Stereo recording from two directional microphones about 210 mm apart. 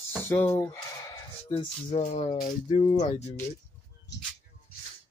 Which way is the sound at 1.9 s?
35° left (ahead or behind).